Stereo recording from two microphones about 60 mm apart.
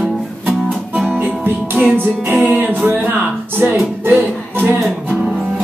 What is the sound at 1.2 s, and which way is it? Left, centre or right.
Music, right.